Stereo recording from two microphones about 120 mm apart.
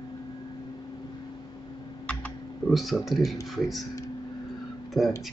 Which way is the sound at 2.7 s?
Centre (ahead or behind).